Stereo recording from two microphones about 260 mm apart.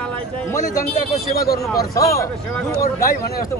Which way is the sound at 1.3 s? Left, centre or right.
Left.